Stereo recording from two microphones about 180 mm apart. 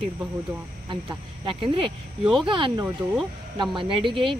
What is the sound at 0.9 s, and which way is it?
Speech, 25° right (ahead or behind).